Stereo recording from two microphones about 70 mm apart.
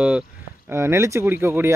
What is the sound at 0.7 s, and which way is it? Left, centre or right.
Speech, right.